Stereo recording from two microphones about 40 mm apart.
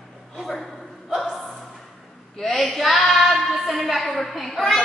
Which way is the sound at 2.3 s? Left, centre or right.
Centre.